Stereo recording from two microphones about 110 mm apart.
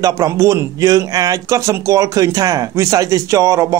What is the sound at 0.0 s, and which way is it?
Speech, 30° right (ahead or behind).